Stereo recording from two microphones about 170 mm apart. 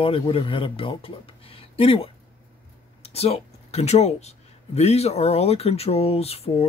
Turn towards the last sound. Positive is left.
turn(degrees=35)  # may be behind; listen again after turning